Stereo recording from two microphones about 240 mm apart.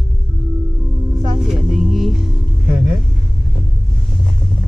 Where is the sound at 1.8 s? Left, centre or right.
Centre.